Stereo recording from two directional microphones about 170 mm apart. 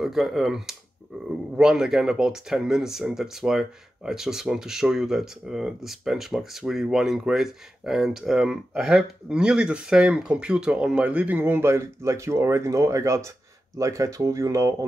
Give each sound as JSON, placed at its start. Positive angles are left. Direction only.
{"t": 0.0, "sound": "speech", "side_deg": 0}
{"t": 1.1, "sound": "a sound", "side_deg": -5}
{"t": 1.6, "sound": "speech", "side_deg": -5}